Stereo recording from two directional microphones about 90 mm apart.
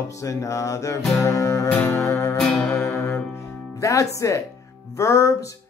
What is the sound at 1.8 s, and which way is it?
Music, 35° left (ahead or behind).